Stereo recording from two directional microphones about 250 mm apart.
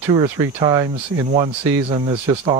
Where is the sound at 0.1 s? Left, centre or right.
Centre.